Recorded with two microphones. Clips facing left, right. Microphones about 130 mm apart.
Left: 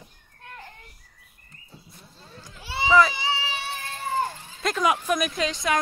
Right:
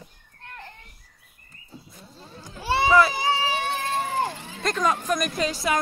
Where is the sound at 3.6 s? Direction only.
90° right.